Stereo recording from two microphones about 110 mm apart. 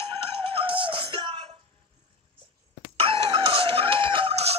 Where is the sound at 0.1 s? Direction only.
55° right (ahead or behind).